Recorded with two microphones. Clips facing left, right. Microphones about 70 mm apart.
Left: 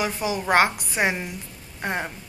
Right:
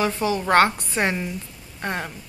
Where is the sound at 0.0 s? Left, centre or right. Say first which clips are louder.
Right 3 dB; centre.